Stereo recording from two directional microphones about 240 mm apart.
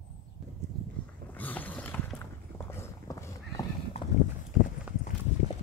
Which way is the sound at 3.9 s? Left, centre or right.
Left.